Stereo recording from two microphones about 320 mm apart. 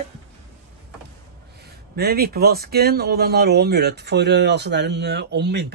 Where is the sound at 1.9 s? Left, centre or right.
Right.